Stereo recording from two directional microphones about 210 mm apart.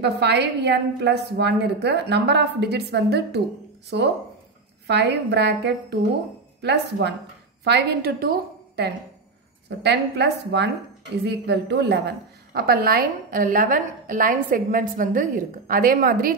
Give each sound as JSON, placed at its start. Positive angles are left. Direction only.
{"t": 0.0, "sound": "a woman's voice", "side_deg": -55}